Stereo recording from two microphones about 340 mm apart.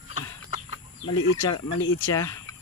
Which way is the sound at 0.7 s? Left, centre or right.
Left.